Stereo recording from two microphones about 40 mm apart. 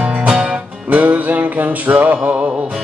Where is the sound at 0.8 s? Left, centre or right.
Right.